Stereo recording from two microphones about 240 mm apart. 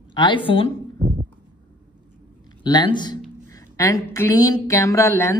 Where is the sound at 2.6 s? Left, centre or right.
Centre.